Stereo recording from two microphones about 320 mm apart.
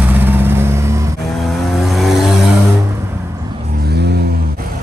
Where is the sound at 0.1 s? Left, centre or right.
Centre.